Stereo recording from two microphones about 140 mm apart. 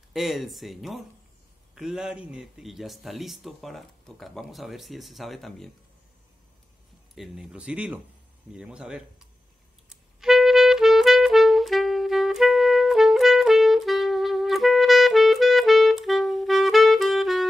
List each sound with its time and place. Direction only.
0.1 s speech: centre (ahead or behind)
7.2 s speech: 5° right (ahead or behind)
10.2 s music: centre (ahead or behind)